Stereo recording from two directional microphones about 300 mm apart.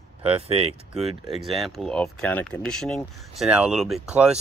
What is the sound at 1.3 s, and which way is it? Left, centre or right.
Speech, centre.